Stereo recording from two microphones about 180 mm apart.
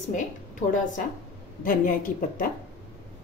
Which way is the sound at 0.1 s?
45° left (ahead or behind).